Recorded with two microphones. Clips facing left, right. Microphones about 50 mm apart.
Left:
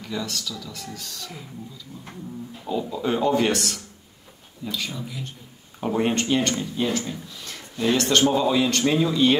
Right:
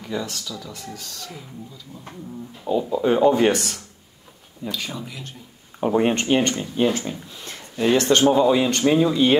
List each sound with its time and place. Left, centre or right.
0.0 s speech: centre
0.8 s speech: centre
2.6 s speech: centre
3.2 s speech: right
4.7 s speech: right
5.8 s speech: centre
6.1 s speech: right